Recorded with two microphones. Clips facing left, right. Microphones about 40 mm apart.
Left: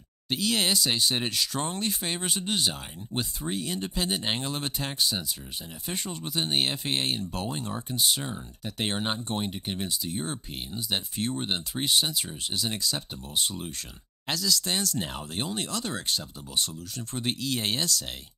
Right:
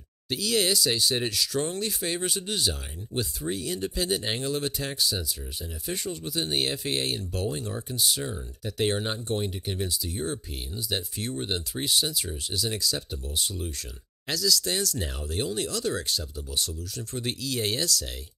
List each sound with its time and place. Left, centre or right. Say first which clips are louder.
0.3 s speech: right 1 dB; left